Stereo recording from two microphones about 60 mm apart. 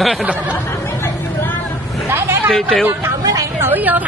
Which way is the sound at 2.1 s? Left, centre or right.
Right.